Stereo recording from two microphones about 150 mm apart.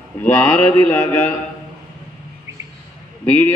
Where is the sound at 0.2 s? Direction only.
15° left (ahead or behind).